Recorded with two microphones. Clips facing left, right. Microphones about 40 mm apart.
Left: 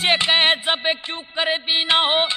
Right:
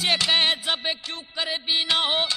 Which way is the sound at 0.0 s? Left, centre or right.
Left.